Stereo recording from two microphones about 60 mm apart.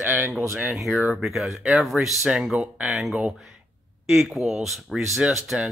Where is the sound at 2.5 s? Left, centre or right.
Centre.